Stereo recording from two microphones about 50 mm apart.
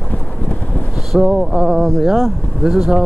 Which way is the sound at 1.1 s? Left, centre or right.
Centre.